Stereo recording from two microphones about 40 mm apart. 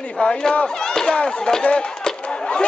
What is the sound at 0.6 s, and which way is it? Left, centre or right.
Speech, centre.